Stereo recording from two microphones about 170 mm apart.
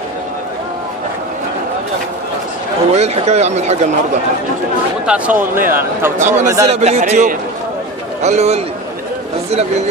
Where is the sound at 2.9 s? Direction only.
40° right (ahead or behind).